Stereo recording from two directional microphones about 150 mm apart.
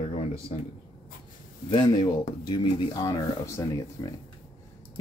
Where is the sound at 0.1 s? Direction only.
40° left (ahead or behind).